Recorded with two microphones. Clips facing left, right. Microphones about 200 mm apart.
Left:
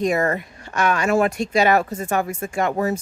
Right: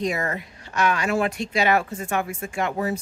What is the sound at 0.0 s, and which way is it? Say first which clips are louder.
Speech: left 6 dB; 50° left (ahead or behind).